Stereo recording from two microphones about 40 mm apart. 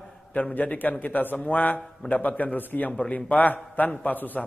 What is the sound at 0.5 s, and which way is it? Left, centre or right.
A man's voice, left.